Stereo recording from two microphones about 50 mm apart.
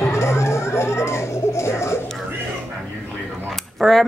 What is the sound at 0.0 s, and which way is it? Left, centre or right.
Music, left.